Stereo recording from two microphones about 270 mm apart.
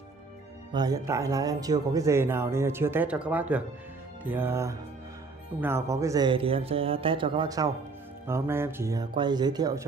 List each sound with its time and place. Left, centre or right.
0.7 s speech: centre